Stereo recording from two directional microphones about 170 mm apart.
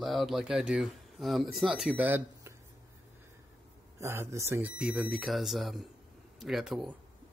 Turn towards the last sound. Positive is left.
turn(degrees=0)  # may be behind; listen again after turning